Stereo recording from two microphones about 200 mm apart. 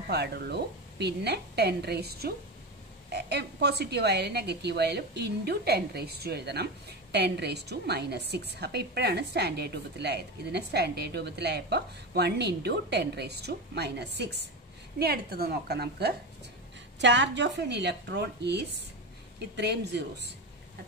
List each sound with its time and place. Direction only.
0.1 s a woman's voice: 55° right (ahead or behind)